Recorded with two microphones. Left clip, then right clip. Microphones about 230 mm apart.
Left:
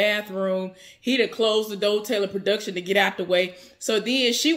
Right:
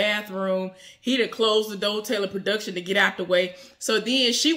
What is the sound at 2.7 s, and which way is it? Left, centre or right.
Speech, right.